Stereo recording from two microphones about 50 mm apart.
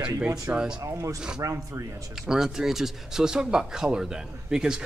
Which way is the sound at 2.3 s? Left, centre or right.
Centre.